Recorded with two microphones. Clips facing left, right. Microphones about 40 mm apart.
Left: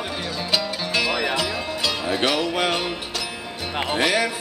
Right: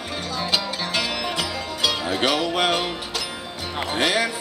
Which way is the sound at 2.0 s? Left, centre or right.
Left.